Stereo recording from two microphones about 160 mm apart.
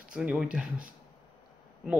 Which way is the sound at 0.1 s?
5° right (ahead or behind).